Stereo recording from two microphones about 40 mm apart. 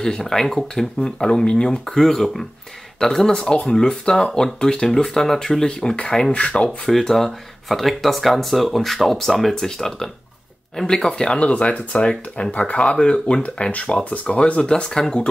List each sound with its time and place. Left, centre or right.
0.0 s speech: centre
2.0 s speech: centre; by 6.7 s left
6.9 s speech: centre
11.1 s speech: left
12.4 s speech: left
12.9 s speech: left
13.4 s speech: left; by 15.2 s centre